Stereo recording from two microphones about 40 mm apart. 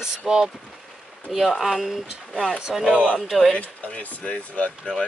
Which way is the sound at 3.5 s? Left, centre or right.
Left.